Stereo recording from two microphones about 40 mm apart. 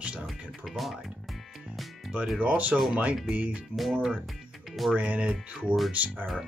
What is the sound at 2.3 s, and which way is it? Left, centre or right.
Speech, right.